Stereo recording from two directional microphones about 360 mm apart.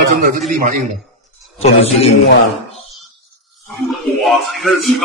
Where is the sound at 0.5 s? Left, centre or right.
Right.